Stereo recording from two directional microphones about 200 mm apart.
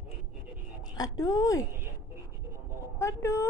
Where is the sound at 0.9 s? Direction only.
20° left (ahead or behind).